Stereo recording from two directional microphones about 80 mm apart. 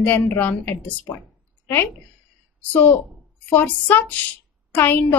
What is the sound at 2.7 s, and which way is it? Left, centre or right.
A woman's voice, left.